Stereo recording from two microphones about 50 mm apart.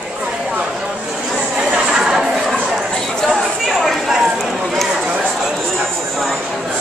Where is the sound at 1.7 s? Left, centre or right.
Centre.